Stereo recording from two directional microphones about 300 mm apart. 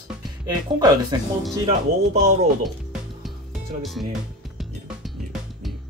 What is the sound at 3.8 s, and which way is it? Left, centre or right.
Speech, centre.